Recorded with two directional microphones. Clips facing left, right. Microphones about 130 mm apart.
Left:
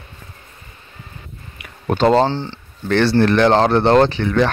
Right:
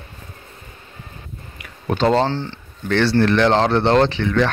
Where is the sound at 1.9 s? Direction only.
45° left (ahead or behind).